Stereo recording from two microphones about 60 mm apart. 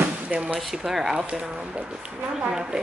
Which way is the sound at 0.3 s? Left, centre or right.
Right.